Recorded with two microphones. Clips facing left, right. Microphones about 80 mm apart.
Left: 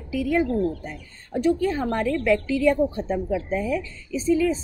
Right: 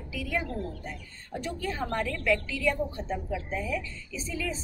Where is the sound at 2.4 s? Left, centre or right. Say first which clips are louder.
Left 9 dB; left.